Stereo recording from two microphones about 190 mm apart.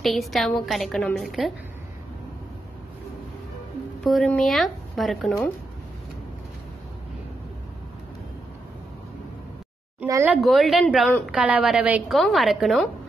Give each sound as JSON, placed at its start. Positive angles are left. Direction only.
{"t": 0.0, "sound": "a woman's voice", "side_deg": 0}
{"t": 4.0, "sound": "a woman's voice", "side_deg": 0}
{"t": 9.9, "sound": "a sound", "side_deg": -15}
{"t": 10.2, "sound": "a woman's voice", "side_deg": -5}